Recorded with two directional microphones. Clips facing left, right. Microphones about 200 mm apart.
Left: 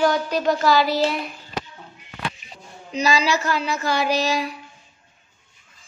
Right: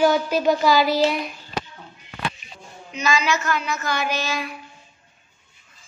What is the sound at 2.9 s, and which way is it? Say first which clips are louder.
Speech: left 2 dB; 35° left (ahead or behind).